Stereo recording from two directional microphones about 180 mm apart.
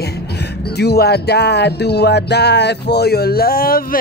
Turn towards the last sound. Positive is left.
turn(degrees=55)  # may be behind; listen again after turning